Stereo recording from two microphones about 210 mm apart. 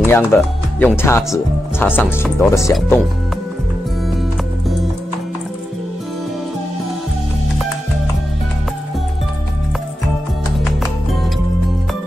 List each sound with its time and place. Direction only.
0.0 s speech: 10° left (ahead or behind)